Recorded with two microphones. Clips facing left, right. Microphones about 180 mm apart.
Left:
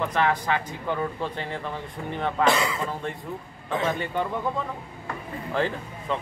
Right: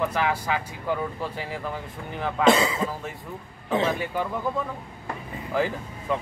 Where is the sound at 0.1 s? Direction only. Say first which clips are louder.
Left 2 dB; 10° right (ahead or behind).